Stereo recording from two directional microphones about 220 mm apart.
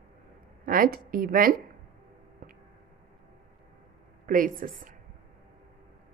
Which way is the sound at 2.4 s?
40° right (ahead or behind).